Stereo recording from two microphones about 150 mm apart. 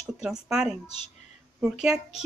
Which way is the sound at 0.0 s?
5° right (ahead or behind).